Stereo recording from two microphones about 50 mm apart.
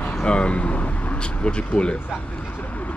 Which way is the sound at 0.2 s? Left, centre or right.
Centre.